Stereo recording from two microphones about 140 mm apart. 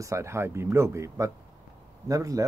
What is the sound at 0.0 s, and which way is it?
Speech, 20° right (ahead or behind).